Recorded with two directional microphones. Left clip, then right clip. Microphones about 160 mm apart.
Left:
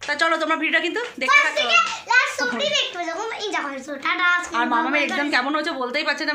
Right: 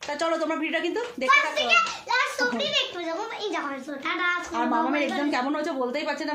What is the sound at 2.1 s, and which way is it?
A child's voice, 40° left (ahead or behind).